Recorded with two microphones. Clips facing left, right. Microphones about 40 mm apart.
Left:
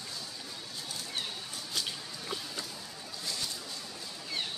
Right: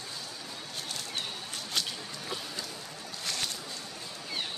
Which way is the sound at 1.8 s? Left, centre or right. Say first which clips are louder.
Right 3 dB; right.